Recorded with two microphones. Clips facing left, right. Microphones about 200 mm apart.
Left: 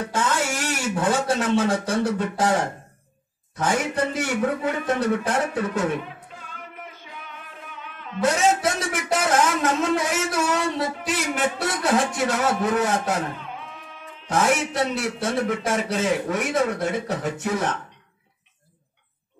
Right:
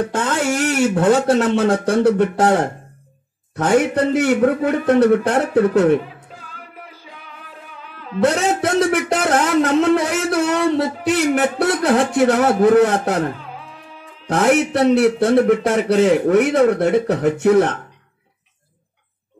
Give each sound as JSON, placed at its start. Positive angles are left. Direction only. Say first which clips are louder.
{"t": 0.0, "sound": "a man's voice", "louder": "right 5 dB", "side_deg": -60}
{"t": 6.5, "sound": "music", "louder": "right 1 dB", "side_deg": -35}
{"t": 8.2, "sound": "a sound", "louder": "right 4 dB", "side_deg": -60}
{"t": 12.6, "sound": "a man's voice", "louder": "right 9 dB", "side_deg": -60}
{"t": 14.3, "sound": "a man's voice", "louder": "right 6 dB", "side_deg": -65}